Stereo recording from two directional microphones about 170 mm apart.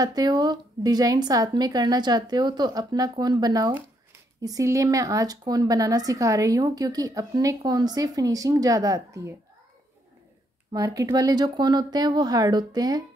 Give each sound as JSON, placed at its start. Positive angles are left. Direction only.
{"t": 0.0, "sound": "speech", "side_deg": -20}
{"t": 10.7, "sound": "speech", "side_deg": -20}